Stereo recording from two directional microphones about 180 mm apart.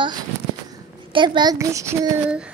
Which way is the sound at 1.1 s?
25° right (ahead or behind).